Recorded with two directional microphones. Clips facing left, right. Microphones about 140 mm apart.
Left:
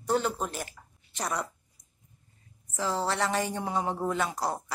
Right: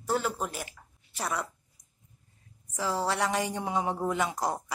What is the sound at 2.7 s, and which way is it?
A woman's voice, 10° right (ahead or behind).